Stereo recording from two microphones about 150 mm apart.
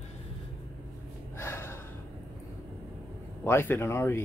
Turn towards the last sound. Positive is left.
turn(degrees=15)  # may be behind; listen again after turning